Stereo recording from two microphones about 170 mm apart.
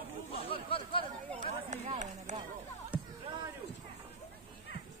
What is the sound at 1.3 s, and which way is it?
Run, 45° right (ahead or behind).